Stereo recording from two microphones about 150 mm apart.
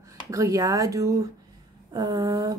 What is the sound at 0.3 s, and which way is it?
A woman's voice, 20° right (ahead or behind).